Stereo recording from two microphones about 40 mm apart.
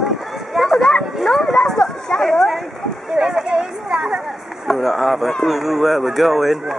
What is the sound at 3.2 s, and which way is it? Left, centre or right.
Speech, centre.